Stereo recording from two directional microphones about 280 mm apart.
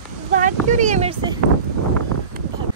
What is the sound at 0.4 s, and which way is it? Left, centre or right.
Speech, right.